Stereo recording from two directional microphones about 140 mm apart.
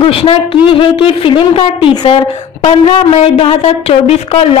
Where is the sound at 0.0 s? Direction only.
40° left (ahead or behind).